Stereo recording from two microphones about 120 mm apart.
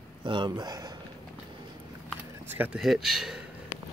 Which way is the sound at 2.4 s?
15° right (ahead or behind).